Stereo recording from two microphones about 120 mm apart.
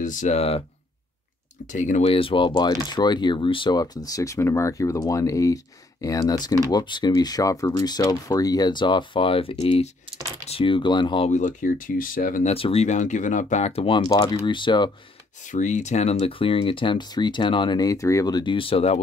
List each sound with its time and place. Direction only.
0.0 s speech: 90° left; by 0.7 s 60° left (ahead or behind)
1.7 s speech: 90° left
2.0 s speech: 50° left (ahead or behind)
11.2 s speech: 90° left
12.5 s speech: 50° left (ahead or behind)
12.8 s speech: 90° left; by 14.0 s 55° left (ahead or behind)
14.0 s speech: 40° left (ahead or behind)
15.4 s speech: 90° left; by 16.2 s 70° left (ahead or behind)
16.2 s speech: 50° left (ahead or behind)